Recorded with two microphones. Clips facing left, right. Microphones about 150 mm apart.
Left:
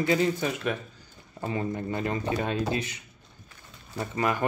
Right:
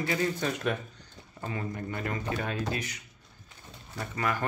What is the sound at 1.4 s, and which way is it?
Speech, 25° left (ahead or behind).